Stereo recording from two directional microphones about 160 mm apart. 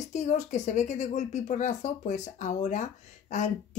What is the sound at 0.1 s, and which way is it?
Speech, 45° left (ahead or behind).